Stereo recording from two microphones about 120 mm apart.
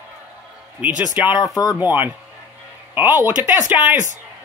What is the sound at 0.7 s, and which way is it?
Speech, 15° right (ahead or behind).